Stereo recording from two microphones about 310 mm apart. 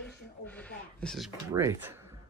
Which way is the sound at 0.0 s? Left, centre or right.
Centre.